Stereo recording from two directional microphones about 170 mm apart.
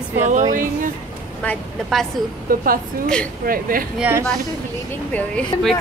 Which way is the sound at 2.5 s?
55° right (ahead or behind).